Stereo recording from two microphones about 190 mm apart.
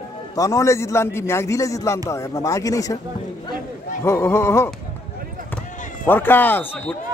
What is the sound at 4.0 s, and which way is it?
Speech, 15° left (ahead or behind).